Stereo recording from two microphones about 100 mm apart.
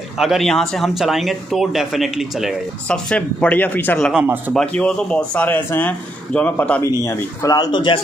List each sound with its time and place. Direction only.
0.2 s speech: centre (ahead or behind)
2.9 s speech: 10° left (ahead or behind)
7.1 s a man's voice: 40° left (ahead or behind)